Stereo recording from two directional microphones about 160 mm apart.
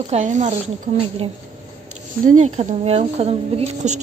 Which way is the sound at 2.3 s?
45° right (ahead or behind).